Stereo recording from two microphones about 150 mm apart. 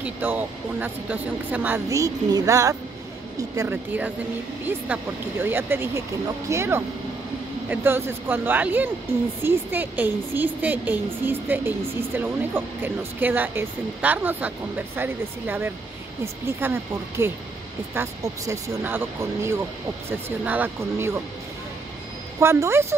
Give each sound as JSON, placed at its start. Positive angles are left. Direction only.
{"t": 0.0, "sound": "a woman's voice", "side_deg": -10}
{"t": 17.9, "sound": "a woman's voice", "side_deg": -20}
{"t": 22.4, "sound": "a woman's voice", "side_deg": -20}